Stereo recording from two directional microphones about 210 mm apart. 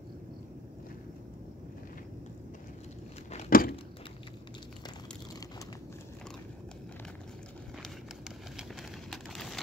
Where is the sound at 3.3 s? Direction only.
45° left (ahead or behind).